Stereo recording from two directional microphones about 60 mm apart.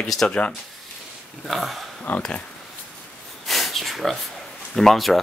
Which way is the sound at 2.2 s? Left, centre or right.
Centre.